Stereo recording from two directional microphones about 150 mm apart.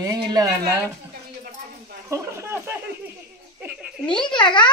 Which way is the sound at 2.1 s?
15° right (ahead or behind).